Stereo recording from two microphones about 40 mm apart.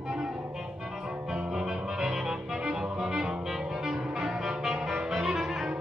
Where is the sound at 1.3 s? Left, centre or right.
Centre.